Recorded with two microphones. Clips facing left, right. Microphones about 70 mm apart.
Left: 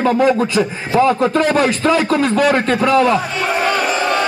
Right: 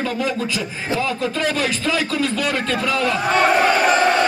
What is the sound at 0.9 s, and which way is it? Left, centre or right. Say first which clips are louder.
Speech: left 9 dB; left.